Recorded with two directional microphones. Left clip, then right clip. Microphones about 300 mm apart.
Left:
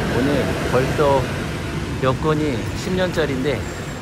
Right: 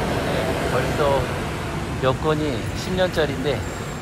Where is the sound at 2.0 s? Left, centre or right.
Centre.